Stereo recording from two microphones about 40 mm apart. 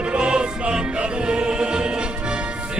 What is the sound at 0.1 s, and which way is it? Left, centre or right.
Music, right.